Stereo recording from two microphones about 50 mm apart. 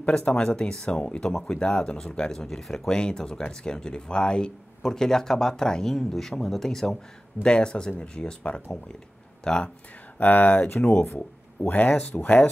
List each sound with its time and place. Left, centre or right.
0.1 s speech: centre
0.8 s speech: left
2.4 s speech: centre
7.4 s speech: centre
10.1 s speech: left
11.7 s speech: left